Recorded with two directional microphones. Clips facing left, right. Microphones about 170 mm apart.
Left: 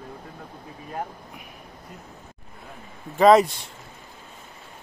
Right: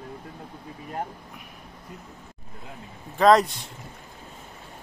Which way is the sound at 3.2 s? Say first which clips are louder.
Left 2 dB; 5° left (ahead or behind).